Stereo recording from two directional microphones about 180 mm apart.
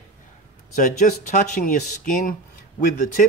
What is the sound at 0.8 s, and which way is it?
Speech, 45° left (ahead or behind).